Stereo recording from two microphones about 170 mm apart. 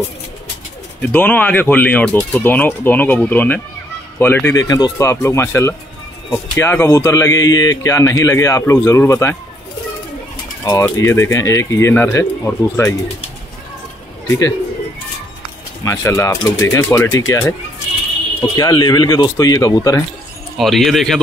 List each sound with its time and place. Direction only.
1.0 s speech: 10° left (ahead or behind)
10.6 s speech: 20° left (ahead or behind)
14.2 s speech: 15° left (ahead or behind)
15.8 s speech: 15° left (ahead or behind)
20.5 s speech: centre (ahead or behind)